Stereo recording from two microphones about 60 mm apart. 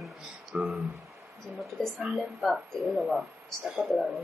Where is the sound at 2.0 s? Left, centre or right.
Centre.